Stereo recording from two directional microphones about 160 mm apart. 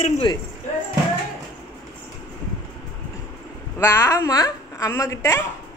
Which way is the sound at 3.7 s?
15° left (ahead or behind).